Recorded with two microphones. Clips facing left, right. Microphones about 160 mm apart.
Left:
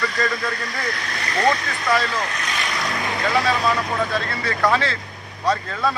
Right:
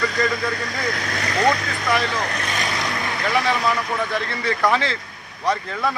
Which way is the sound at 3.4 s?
15° right (ahead or behind).